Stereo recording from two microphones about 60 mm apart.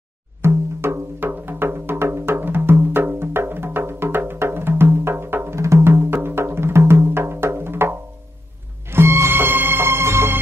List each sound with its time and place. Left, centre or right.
0.4 s music: right